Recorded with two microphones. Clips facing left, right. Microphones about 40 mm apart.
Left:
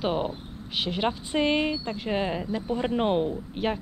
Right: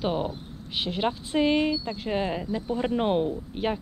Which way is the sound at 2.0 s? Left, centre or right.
Centre.